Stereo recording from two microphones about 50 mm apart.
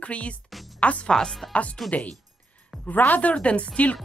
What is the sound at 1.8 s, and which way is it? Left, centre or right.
Speech, left.